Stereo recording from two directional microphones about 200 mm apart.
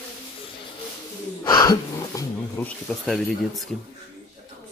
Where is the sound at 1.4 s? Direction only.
20° left (ahead or behind).